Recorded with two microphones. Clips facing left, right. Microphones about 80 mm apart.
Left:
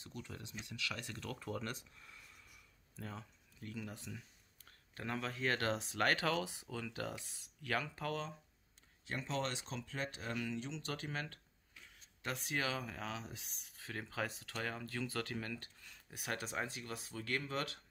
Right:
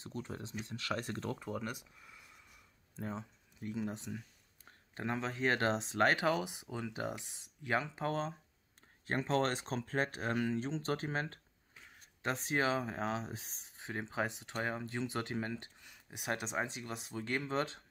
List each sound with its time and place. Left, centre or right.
0.0 s speech: right
1.3 s speech: centre
3.0 s speech: right
9.0 s speech: right